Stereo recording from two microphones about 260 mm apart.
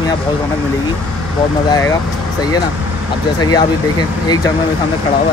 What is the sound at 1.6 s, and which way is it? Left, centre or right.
Speech, centre.